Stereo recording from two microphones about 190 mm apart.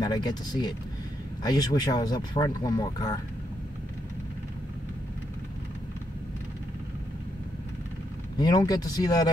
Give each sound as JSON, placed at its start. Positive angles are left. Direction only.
{"t": 0.0, "sound": "speech", "side_deg": 20}
{"t": 8.4, "sound": "speech", "side_deg": 20}